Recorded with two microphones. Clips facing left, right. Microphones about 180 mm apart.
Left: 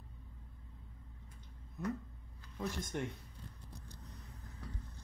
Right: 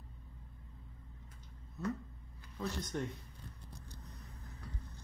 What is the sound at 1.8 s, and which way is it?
Speech, 15° left (ahead or behind).